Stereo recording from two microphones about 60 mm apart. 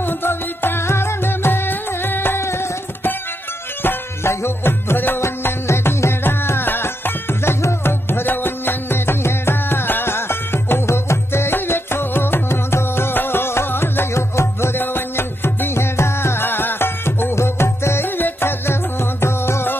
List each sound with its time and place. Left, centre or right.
0.0 s music: left